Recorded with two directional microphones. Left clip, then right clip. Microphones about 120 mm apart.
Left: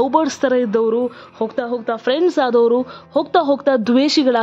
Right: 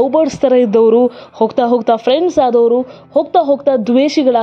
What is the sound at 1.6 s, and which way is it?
Speech, 40° right (ahead or behind).